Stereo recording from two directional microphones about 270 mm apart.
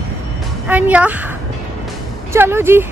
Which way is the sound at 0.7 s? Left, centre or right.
Centre.